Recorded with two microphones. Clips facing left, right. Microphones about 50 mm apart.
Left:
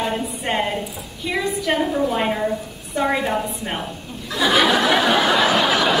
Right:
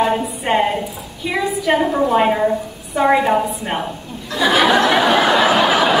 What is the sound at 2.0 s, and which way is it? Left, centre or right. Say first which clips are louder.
A woman's voice: right 6 dB; centre.